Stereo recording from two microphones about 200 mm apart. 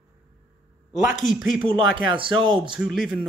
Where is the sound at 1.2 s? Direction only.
Centre (ahead or behind).